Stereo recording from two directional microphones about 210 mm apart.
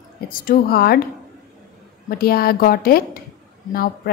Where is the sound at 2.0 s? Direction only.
45° left (ahead or behind).